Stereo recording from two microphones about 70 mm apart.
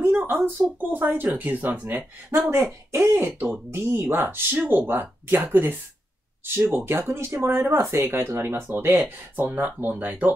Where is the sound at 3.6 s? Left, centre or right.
Right.